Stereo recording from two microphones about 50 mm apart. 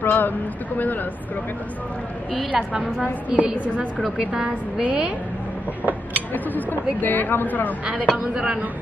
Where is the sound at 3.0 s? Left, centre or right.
Right.